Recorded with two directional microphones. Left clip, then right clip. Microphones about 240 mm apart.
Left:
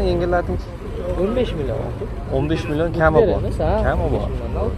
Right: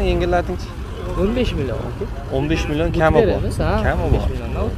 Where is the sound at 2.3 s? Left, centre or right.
Centre.